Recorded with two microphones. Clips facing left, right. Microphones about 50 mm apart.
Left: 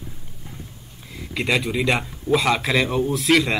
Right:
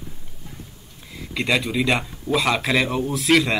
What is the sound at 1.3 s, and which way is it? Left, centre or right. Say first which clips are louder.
A man's voice: even; centre.